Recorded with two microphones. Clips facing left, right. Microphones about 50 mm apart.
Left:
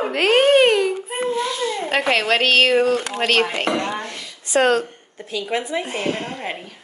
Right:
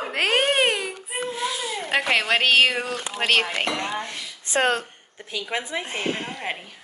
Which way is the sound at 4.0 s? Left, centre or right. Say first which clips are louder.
Left 2 dB; right.